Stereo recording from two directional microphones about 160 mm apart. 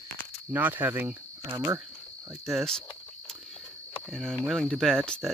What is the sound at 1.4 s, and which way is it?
Speech, 20° right (ahead or behind).